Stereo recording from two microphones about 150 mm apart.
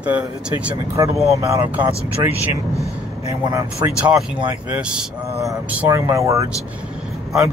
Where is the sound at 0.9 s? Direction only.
20° right (ahead or behind).